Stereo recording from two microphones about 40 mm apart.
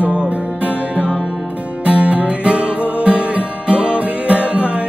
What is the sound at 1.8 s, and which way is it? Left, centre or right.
Music, right.